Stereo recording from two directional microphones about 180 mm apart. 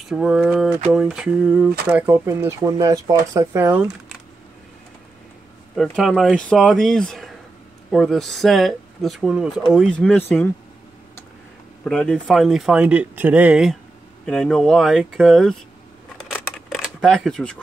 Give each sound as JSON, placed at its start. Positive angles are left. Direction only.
{"t": 0.1, "sound": "speech", "side_deg": 0}
{"t": 5.8, "sound": "speech", "side_deg": 0}
{"t": 11.8, "sound": "speech", "side_deg": 5}
{"t": 16.3, "sound": "a sound", "side_deg": 0}